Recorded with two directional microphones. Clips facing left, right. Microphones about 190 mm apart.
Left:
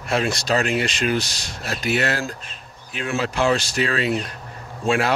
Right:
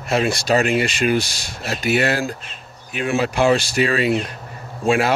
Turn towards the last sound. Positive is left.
turn(degrees=-5)  # may be behind; listen again after turning